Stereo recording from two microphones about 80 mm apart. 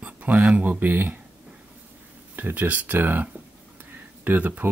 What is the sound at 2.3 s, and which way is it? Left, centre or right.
Speech, right.